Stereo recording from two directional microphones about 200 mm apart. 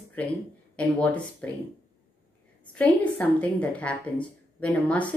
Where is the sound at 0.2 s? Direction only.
5° left (ahead or behind).